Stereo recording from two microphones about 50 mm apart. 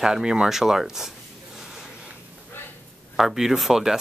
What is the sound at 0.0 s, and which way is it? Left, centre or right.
Speech, centre.